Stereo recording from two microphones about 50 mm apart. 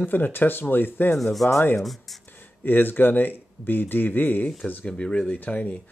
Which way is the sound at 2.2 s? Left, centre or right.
Left.